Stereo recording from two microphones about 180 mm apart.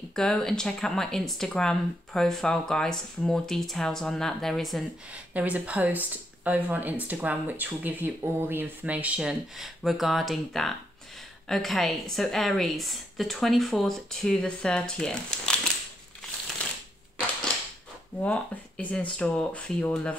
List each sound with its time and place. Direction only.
0.1 s speech: 5° left (ahead or behind)
18.2 s speech: 10° left (ahead or behind)